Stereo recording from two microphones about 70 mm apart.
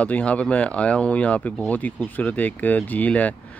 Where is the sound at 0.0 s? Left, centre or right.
Centre.